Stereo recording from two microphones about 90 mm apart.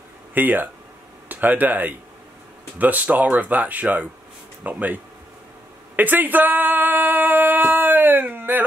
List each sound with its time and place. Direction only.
0.3 s speech: 20° right (ahead or behind)